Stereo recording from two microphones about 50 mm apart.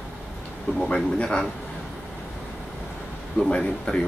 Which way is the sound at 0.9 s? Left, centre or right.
Centre.